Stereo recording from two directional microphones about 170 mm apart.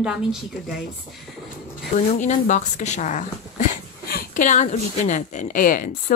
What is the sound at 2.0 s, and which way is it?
Speech, 45° left (ahead or behind).